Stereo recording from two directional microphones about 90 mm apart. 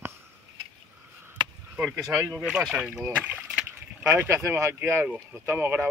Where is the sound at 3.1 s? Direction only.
15° right (ahead or behind).